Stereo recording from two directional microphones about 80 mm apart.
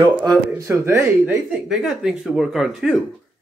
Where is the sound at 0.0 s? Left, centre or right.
Right.